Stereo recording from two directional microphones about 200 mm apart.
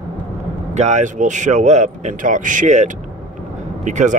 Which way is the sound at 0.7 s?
35° right (ahead or behind).